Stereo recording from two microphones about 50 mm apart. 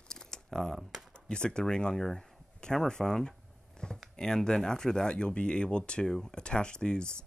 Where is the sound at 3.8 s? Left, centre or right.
Centre.